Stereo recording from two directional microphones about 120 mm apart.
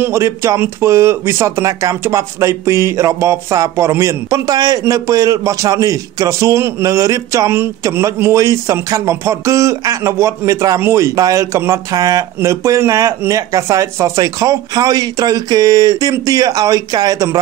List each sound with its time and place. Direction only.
0.0 s speech: 25° right (ahead or behind)